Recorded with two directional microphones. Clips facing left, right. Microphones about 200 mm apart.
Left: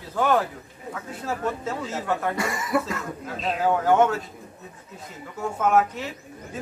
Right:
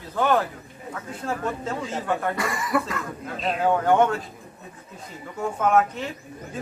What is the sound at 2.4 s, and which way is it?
Speech, 25° left (ahead or behind).